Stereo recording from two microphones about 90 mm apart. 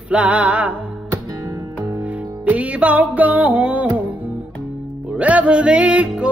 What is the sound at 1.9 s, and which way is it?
Music, 15° right (ahead or behind).